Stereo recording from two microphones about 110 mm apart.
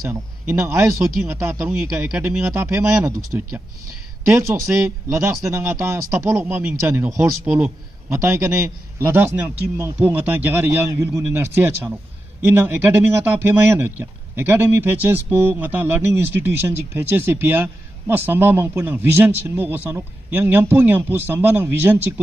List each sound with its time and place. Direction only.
0.0 s speech: 20° right (ahead or behind)
1.9 s speech: 10° right (ahead or behind)
2.2 s speech: 25° right (ahead or behind)
8.1 s speech: 25° right (ahead or behind)